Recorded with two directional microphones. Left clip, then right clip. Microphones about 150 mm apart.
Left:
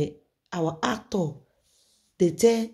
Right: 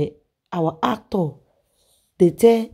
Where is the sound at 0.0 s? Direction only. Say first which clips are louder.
Right 4 dB; 45° right (ahead or behind).